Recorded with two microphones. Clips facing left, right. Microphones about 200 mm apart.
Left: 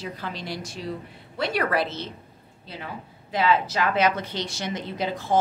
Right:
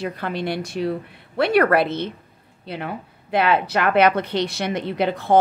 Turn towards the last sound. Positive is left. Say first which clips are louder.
# right 7 dB
turn(degrees=-60)  # may be behind; listen again after turning